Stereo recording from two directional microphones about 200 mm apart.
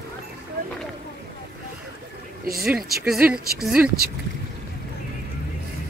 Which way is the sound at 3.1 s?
5° right (ahead or behind).